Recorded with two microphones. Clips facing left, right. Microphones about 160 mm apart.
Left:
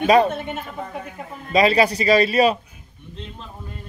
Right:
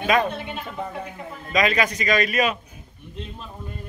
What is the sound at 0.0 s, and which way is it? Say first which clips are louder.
Speech: left 6 dB; 35° left (ahead or behind).